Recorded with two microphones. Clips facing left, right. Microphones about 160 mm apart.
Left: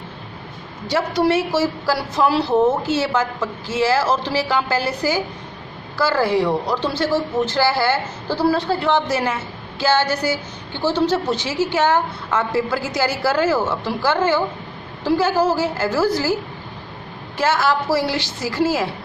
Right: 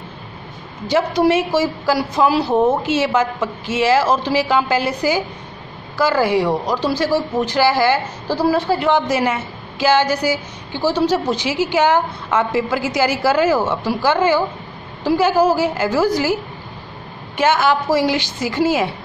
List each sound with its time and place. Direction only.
0.8 s speech: 20° right (ahead or behind)
17.4 s speech: 20° right (ahead or behind)